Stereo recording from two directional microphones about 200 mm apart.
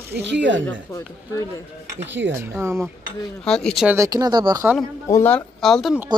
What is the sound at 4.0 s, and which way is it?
Speech, 15° right (ahead or behind).